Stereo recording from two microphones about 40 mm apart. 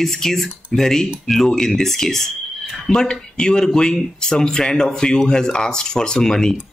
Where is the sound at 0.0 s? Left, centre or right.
Centre.